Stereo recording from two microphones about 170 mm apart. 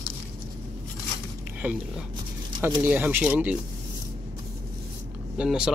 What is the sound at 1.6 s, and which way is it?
Speech, 10° right (ahead or behind).